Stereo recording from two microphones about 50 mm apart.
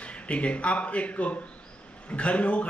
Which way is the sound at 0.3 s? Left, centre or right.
Left.